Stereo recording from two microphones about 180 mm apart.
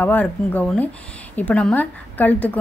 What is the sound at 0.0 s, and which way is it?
A woman's voice, 10° left (ahead or behind).